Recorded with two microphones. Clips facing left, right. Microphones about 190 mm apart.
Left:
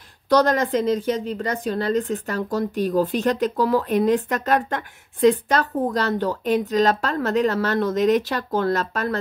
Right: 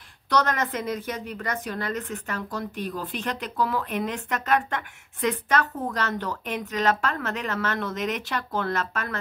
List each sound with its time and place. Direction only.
0.3 s a woman's voice: 35° left (ahead or behind)